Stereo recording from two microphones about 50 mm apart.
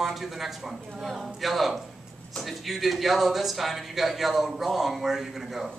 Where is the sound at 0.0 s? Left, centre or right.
Centre.